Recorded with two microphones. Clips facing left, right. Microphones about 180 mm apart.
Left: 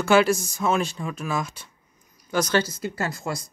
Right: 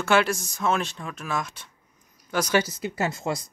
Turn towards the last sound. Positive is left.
turn(degrees=-20)  # may be behind; listen again after turning